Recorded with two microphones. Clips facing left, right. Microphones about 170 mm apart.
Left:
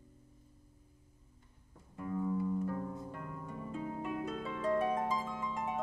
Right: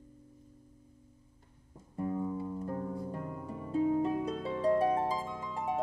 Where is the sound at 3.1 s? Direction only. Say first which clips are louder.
Right 5 dB; 25° right (ahead or behind).